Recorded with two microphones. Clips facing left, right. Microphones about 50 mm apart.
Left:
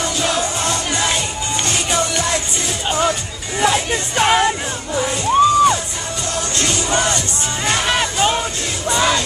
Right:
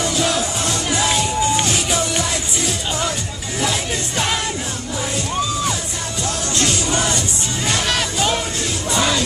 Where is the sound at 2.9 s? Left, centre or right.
Left.